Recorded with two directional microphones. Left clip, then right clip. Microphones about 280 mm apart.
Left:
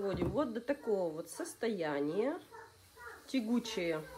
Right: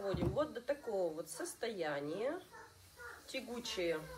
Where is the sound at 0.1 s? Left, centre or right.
Left.